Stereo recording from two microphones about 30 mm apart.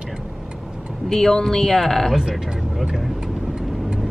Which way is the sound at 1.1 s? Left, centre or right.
Centre.